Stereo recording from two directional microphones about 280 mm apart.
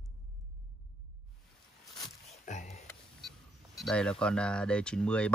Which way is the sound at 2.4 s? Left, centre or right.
Left.